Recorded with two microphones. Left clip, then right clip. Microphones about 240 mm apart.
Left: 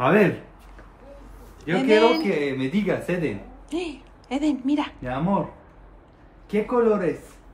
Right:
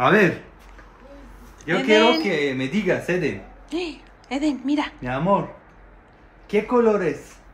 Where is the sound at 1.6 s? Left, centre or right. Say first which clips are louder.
Right 1 dB; centre.